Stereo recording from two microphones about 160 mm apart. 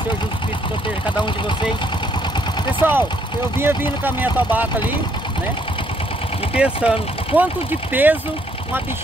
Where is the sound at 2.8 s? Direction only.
10° right (ahead or behind).